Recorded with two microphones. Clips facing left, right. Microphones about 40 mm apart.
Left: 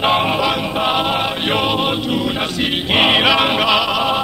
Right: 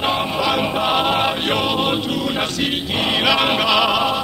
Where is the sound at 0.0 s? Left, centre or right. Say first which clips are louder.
Left 5 dB; left.